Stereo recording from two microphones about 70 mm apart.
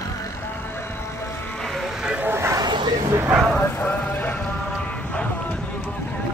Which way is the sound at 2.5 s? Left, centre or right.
Right.